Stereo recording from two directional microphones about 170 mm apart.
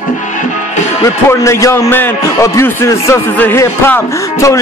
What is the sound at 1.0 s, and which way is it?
A man's voice, 15° left (ahead or behind).